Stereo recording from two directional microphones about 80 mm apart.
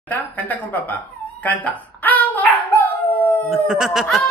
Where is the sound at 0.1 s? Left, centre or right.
Left.